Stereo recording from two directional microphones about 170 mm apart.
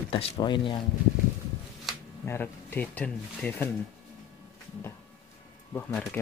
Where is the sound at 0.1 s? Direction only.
30° left (ahead or behind).